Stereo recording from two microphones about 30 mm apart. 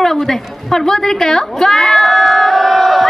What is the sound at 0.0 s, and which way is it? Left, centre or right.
A woman's voice, centre.